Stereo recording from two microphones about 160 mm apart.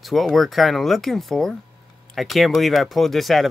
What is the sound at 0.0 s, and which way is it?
Speech, centre (ahead or behind).